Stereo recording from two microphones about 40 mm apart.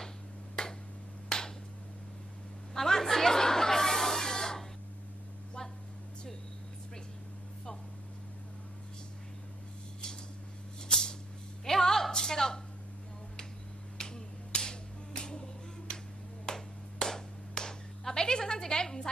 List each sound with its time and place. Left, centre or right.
2.7 s chatter: centre
10.9 s music: centre
11.6 s a sound: centre
13.9 s finger snapping: centre
16.4 s clapping: centre